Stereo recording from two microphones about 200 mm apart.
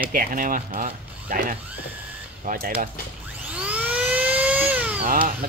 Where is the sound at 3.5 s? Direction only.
5° right (ahead or behind).